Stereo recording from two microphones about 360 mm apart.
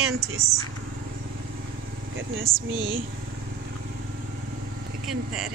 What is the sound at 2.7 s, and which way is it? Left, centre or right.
Speech, right.